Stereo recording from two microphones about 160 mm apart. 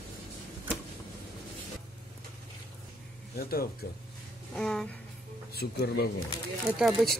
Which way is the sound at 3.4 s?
70° left (ahead or behind).